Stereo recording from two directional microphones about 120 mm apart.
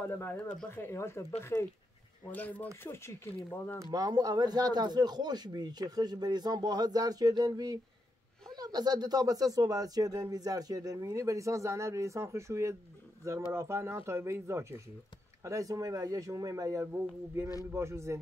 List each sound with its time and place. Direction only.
0.1 s speech: 20° left (ahead or behind)
2.3 s speech: 15° left (ahead or behind)
3.8 s speech: 30° right (ahead or behind)